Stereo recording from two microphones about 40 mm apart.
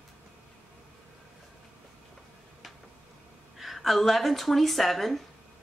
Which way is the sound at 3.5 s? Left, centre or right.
Centre.